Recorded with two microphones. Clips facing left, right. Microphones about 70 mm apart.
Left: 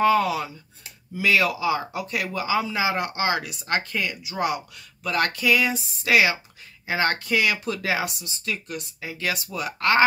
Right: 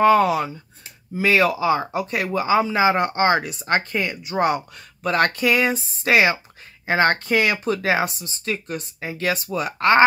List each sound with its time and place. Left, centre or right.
0.0 s speech: right